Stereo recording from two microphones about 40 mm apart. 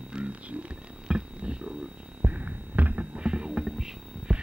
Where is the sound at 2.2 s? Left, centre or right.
Right.